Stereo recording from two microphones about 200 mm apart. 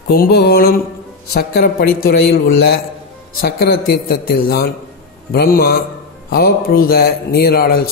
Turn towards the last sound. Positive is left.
turn(degrees=50)  # may be behind; listen again after turning